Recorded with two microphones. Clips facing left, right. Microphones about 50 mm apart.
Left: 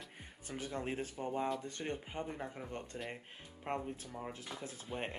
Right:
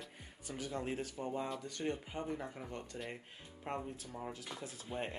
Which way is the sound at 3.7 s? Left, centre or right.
Left.